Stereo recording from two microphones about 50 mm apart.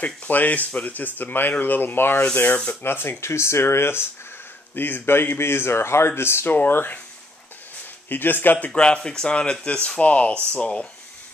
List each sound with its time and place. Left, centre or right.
0.0 s speech: left
2.3 s speech: left
2.8 s speech: left
4.7 s speech: left
8.1 s speech: left
8.7 s speech: centre